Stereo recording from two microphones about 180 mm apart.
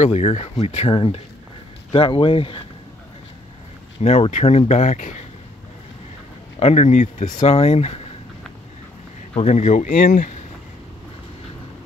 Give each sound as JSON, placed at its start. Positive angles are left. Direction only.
{"t": 0.0, "sound": "speech", "side_deg": 35}
{"t": 4.0, "sound": "speech", "side_deg": 40}
{"t": 6.6, "sound": "speech", "side_deg": 35}
{"t": 9.3, "sound": "speech", "side_deg": 40}